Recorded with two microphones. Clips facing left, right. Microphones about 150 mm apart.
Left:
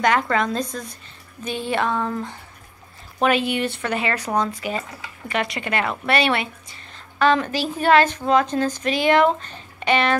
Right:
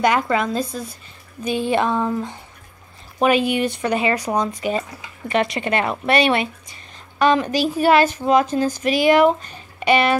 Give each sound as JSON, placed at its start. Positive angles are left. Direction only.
{"t": 0.0, "sound": "a woman's voice", "side_deg": -10}